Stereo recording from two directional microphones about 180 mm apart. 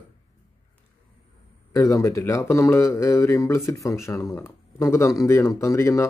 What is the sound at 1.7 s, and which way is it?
Speech, 15° left (ahead or behind).